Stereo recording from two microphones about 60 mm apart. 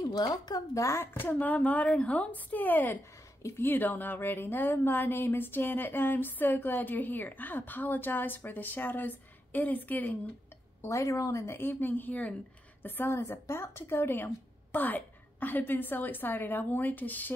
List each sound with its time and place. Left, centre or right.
0.0 s speech: left
0.9 s a woman's voice: left
10.8 s speech: left
11.4 s speech: left
12.8 s speech: left